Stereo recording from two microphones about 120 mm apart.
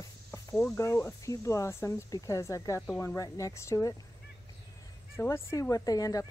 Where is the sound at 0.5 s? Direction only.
10° left (ahead or behind).